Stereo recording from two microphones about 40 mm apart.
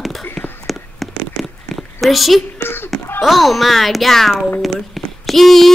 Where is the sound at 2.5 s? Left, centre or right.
Left.